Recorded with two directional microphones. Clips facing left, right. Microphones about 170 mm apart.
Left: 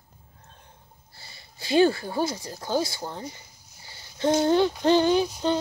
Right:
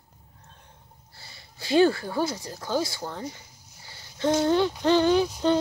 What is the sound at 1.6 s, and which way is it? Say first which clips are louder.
Speech: even; 20° left (ahead or behind).